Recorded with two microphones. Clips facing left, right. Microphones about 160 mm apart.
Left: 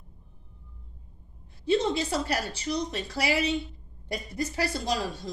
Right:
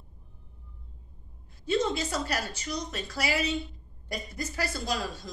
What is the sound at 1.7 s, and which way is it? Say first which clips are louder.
Speech: left 3 dB; 30° left (ahead or behind).